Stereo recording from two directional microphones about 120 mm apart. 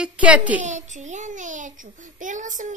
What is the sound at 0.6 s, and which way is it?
A child's voice, 85° right.